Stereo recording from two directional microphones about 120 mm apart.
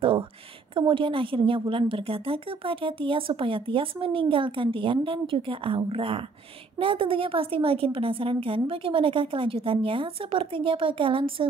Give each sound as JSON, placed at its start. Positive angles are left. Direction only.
{"t": 0.7, "sound": "a woman's voice", "side_deg": -45}